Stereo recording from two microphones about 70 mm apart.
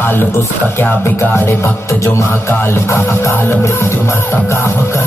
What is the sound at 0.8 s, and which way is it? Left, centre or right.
Music, left.